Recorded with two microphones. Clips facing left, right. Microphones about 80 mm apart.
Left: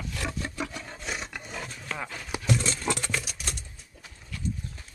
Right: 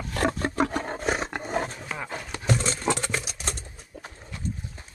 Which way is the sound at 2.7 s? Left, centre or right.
Right.